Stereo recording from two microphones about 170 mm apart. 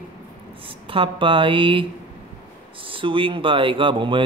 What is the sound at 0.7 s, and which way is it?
A man's voice, 30° right (ahead or behind).